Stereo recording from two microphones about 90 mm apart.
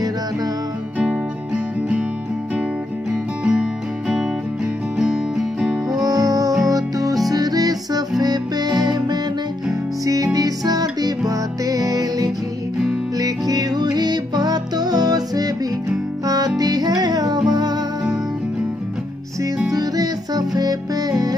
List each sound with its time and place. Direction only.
0.9 s music: 15° right (ahead or behind)
3.1 s music: 10° right (ahead or behind)
4.9 s music: 5° right (ahead or behind)
5.9 s music: 45° right (ahead or behind)
19.7 s music: 45° right (ahead or behind)